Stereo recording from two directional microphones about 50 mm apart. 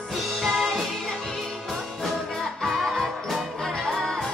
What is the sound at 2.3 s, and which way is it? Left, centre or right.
Music, centre.